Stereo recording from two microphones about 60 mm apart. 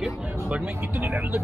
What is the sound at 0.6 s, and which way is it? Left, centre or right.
Speech, right.